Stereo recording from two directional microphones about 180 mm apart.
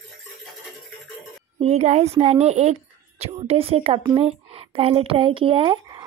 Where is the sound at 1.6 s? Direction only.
35° right (ahead or behind).